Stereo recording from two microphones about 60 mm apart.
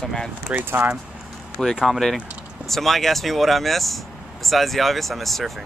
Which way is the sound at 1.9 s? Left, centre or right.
Centre.